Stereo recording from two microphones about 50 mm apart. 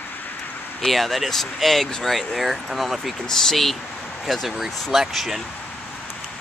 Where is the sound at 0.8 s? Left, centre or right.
Centre.